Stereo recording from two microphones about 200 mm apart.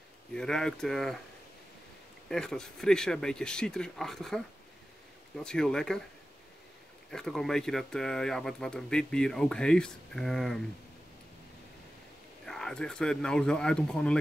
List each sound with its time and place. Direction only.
0.3 s speech: 5° left (ahead or behind)
2.2 s speech: 5° left (ahead or behind)
5.4 s speech: 5° left (ahead or behind)
7.1 s speech: centre (ahead or behind)
12.4 s speech: 5° left (ahead or behind)